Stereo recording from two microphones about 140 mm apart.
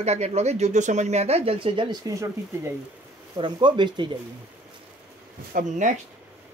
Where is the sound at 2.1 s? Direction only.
20° right (ahead or behind).